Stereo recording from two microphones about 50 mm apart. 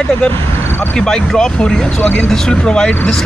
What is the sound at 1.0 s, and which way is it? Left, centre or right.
Speech, centre.